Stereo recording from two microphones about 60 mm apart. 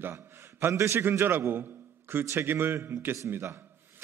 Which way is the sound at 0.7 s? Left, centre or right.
Right.